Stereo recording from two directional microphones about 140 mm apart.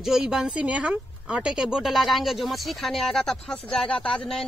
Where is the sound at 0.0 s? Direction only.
5° right (ahead or behind).